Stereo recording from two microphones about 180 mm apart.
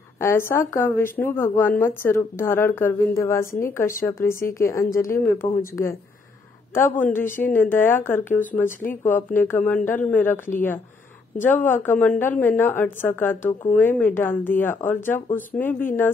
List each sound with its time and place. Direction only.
0.2 s speech: 15° left (ahead or behind)
5.4 s speech: 55° left (ahead or behind)
6.7 s speech: 10° left (ahead or behind)